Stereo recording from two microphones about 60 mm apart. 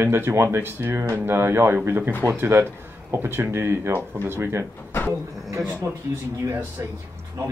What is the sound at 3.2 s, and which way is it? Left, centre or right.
Speech, right.